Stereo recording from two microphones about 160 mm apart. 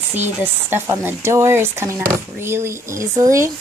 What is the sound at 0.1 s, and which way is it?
Speech, 10° right (ahead or behind).